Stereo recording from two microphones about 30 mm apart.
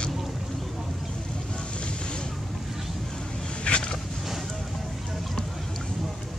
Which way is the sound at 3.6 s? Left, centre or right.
Left.